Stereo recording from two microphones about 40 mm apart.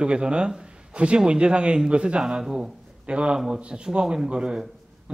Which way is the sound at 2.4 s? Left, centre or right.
Centre.